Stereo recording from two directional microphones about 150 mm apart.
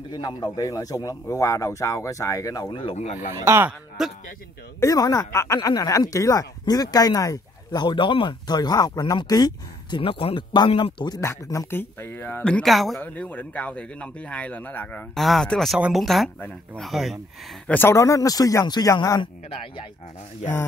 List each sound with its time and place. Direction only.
0.1 s speech: 30° left (ahead or behind)
2.7 s speech: 35° left (ahead or behind)
3.4 s speech: 15° right (ahead or behind)
4.0 s speech: centre (ahead or behind)
4.7 s speech: 25° left (ahead or behind)
15.1 s speech: centre (ahead or behind)
16.3 s speech: 10° left (ahead or behind)
16.8 s speech: centre (ahead or behind)
17.6 s speech: 15° left (ahead or behind)